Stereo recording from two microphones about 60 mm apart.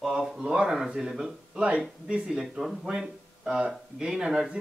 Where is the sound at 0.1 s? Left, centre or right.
Centre.